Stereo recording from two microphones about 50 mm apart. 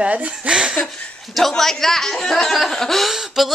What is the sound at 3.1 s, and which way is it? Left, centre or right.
Gasp, centre.